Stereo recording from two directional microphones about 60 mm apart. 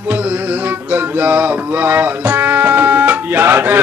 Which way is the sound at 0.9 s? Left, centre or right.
Right.